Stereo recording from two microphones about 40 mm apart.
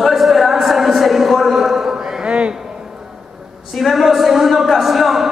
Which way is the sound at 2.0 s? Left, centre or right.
Centre.